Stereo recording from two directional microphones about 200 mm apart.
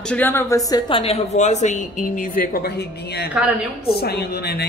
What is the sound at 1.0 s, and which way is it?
Speech, 30° left (ahead or behind).